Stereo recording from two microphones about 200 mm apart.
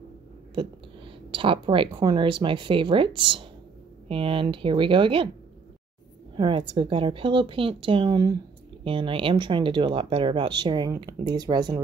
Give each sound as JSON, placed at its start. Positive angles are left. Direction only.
{"t": 1.3, "sound": "speech", "side_deg": -25}
{"t": 6.3, "sound": "speech", "side_deg": -25}